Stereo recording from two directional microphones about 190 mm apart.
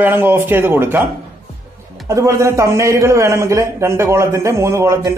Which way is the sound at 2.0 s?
15° right (ahead or behind).